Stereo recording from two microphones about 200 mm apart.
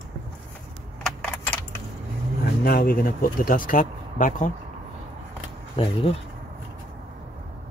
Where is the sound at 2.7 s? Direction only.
45° left (ahead or behind).